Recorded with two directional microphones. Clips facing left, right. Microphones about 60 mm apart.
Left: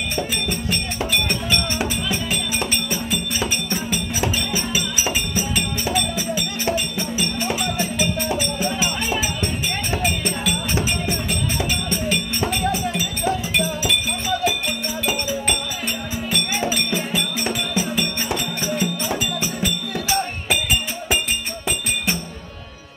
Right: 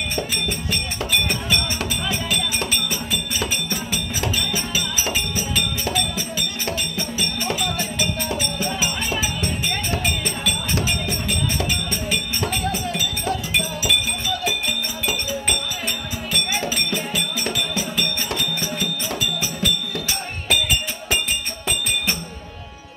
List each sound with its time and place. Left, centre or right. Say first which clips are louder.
0.7 s music: left 1 dB; centre
2.9 s music: left 2 dB; centre
5.9 s music: left 2 dB; centre
11.9 s music: left 2 dB; centre
12.6 s music: left 2 dB; centre
16.7 s music: left 2 dB; centre